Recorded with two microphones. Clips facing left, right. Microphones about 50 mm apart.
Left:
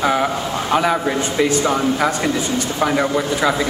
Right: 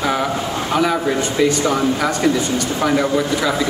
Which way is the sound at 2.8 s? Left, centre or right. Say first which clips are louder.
Right 1 dB; centre.